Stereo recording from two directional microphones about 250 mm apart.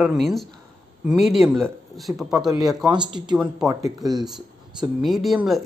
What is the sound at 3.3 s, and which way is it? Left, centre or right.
Speech, centre.